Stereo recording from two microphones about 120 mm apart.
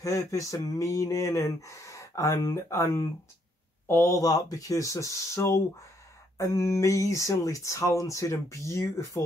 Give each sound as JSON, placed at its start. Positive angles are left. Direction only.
{"t": 0.0, "sound": "speech", "side_deg": 25}